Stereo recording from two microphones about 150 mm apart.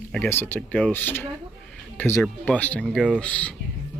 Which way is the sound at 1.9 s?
15° left (ahead or behind).